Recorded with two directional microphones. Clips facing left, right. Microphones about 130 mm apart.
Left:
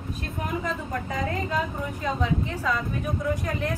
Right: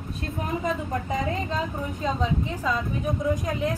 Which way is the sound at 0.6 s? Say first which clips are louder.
Right 2 dB; 25° right (ahead or behind).